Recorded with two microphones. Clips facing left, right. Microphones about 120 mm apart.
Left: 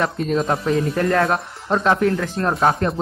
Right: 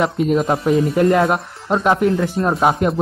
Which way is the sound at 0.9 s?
15° right (ahead or behind).